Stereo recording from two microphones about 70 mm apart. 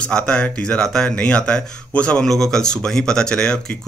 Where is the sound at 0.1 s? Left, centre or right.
Centre.